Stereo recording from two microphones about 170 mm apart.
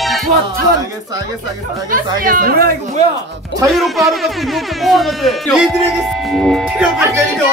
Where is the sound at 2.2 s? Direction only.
60° right (ahead or behind).